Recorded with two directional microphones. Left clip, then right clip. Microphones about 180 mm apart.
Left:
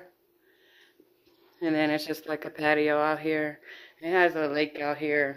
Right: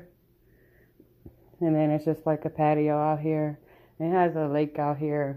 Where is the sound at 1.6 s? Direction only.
15° left (ahead or behind).